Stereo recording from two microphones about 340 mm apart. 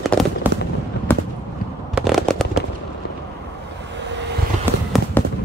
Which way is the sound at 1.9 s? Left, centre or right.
Centre.